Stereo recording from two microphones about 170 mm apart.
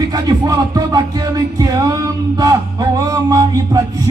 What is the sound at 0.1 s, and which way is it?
Music, 20° right (ahead or behind).